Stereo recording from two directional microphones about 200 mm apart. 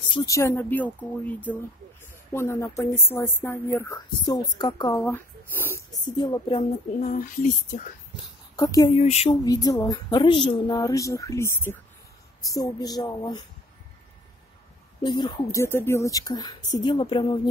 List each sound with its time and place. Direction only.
0.1 s speech: 15° left (ahead or behind)
6.0 s speech: 20° left (ahead or behind)
7.0 s speech: 40° left (ahead or behind)
8.5 s speech: 20° left (ahead or behind)
8.9 s speech: 35° left (ahead or behind)
9.3 s speech: 20° left (ahead or behind)
15.0 s speech: 20° left (ahead or behind)